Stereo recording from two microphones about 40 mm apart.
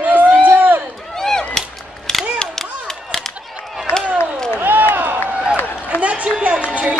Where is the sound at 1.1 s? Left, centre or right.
Centre.